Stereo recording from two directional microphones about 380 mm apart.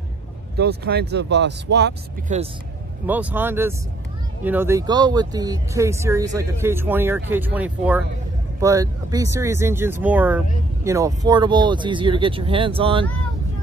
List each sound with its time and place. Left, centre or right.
0.6 s speech: right
3.1 s speech: centre